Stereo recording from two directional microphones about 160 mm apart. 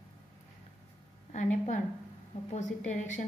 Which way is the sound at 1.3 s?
50° left (ahead or behind).